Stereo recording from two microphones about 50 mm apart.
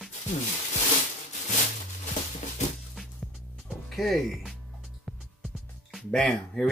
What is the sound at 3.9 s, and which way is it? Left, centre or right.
Speech, centre.